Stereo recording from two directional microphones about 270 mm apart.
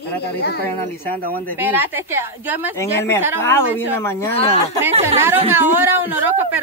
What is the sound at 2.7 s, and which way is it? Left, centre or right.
Speech, centre.